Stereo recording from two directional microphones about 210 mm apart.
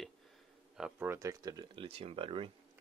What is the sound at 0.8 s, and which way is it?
Speech, 10° right (ahead or behind).